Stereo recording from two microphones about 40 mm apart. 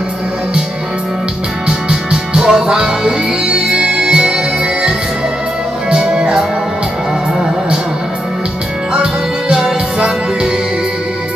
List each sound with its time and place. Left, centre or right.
1.7 s music: right
5.9 s music: right
8.9 s music: centre